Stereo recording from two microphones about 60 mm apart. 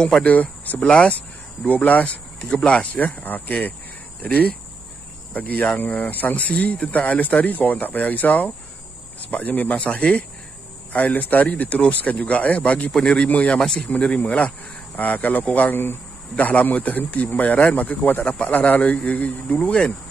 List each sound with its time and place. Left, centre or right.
0.0 s speech: centre
13.6 s speech: centre
13.8 s speech: left